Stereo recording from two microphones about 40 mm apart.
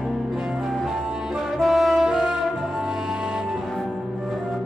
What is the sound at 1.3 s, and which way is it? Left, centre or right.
Brass instrument, centre.